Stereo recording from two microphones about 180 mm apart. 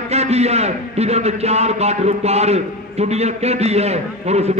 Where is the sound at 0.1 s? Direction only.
35° right (ahead or behind).